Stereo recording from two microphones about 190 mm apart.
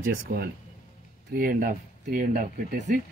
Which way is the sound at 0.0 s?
55° right (ahead or behind).